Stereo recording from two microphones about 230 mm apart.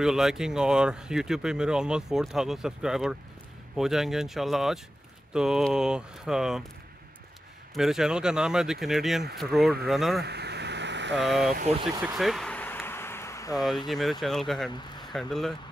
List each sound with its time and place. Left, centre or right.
0.0 s speech: centre
7.7 s speech: centre
10.2 s vehicle: right
11.1 s speech: centre
11.8 s speech: centre
12.2 s a sound: centre
13.8 s speech: centre